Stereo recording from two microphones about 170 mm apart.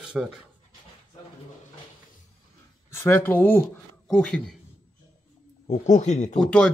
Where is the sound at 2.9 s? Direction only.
15° left (ahead or behind).